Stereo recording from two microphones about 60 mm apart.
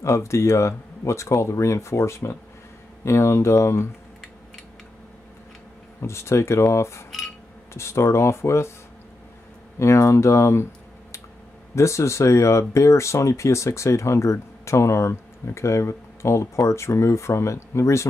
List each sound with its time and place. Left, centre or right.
0.0 s speech: left
5.9 s speech: left
7.1 s a sound: centre
7.7 s speech: left
9.8 s speech: left